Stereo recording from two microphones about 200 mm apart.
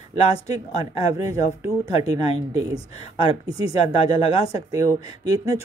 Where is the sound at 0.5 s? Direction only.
20° right (ahead or behind).